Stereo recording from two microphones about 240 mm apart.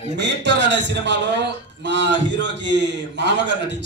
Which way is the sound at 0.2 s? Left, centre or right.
Right.